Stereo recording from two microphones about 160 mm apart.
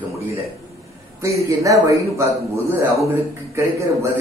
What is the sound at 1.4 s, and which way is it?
A man's voice, 20° right (ahead or behind).